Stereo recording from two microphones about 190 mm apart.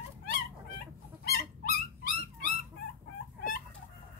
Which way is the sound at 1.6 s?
50° left (ahead or behind).